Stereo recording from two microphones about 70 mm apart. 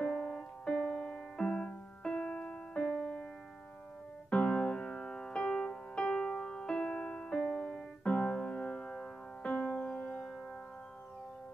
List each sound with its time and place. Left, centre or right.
0.0 s piano: centre
4.3 s music: centre